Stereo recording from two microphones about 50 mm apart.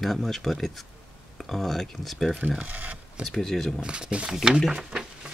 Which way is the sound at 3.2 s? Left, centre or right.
Centre.